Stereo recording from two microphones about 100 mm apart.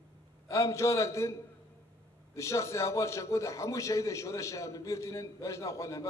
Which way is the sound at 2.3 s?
30° left (ahead or behind).